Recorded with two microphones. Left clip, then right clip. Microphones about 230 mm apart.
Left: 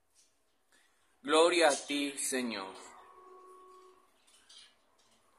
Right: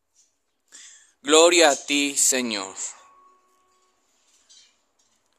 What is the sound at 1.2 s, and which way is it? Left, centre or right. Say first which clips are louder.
Speech: right 10 dB; right.